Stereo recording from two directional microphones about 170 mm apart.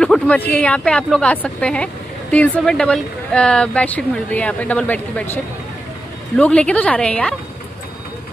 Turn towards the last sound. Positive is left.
turn(degrees=5)  # may be behind; listen again after turning